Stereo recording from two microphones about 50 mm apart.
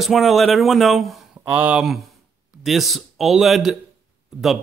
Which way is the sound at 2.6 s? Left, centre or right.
Centre.